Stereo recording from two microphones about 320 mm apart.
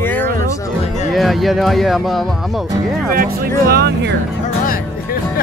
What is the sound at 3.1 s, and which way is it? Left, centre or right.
Speech, right.